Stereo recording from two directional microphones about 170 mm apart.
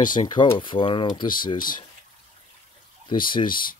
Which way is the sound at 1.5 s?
55° left (ahead or behind).